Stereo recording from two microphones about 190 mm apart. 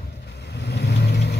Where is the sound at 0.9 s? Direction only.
65° left (ahead or behind).